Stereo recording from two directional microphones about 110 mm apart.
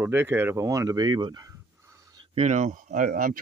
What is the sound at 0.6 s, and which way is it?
Speech, 30° right (ahead or behind).